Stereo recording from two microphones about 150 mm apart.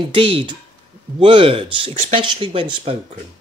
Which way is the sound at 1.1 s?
35° right (ahead or behind).